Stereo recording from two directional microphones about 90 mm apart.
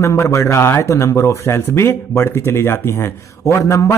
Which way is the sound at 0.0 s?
35° left (ahead or behind).